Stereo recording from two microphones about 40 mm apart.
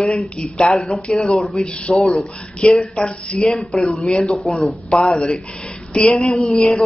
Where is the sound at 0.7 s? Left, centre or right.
Centre.